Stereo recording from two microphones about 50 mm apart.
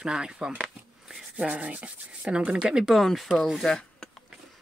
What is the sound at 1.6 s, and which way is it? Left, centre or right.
Speech, right.